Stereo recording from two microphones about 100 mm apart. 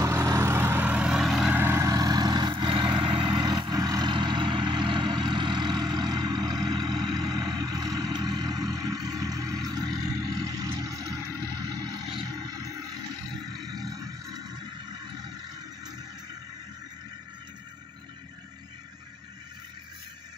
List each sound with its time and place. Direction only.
0.1 s vehicle: 25° right (ahead or behind); by 1.5 s 5° right (ahead or behind)
1.5 s vehicle: 25° right (ahead or behind)
1.9 s vehicle: 40° right (ahead or behind)
13.6 s a sound: 40° right (ahead or behind)